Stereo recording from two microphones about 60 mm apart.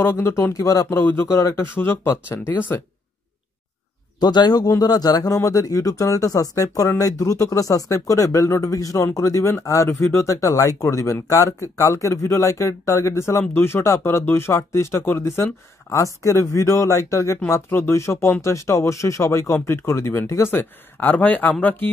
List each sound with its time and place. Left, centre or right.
0.0 s speech: left
0.5 s speech: left
0.9 s speech: left
1.3 s speech: left
4.5 s speech: left
10.8 s speech: left
16.0 s speech: left
17.6 s speech: left